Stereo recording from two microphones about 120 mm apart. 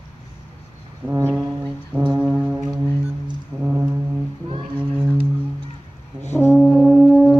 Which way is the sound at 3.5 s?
30° right (ahead or behind).